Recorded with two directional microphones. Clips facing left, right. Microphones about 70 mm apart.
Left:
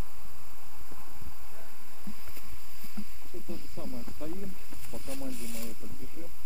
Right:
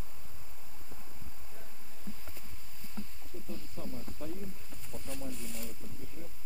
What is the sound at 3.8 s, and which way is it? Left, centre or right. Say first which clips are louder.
Speech: left 2 dB; centre.